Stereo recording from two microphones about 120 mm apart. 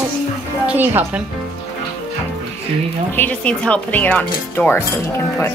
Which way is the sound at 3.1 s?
10° left (ahead or behind).